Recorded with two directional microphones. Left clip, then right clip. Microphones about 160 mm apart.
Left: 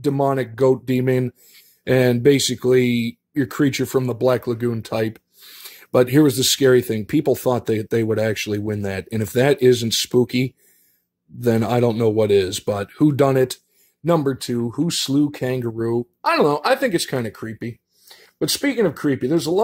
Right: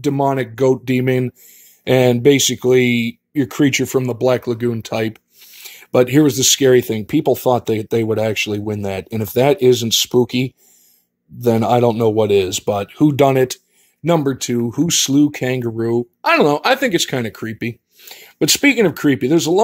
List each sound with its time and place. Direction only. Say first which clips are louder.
0.0 s speech: right 2 dB; centre (ahead or behind); by 19.6 s 15° right (ahead or behind)